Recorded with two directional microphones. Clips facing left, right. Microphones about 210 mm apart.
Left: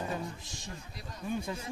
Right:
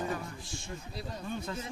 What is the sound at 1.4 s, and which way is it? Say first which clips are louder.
Speech: left 1 dB; 10° left (ahead or behind).